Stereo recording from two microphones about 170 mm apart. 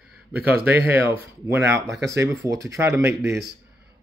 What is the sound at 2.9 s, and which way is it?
Speech, 5° right (ahead or behind).